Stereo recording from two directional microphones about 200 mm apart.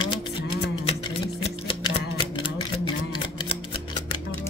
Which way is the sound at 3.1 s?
25° left (ahead or behind).